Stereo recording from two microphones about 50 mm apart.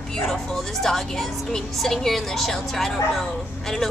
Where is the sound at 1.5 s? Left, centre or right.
Centre.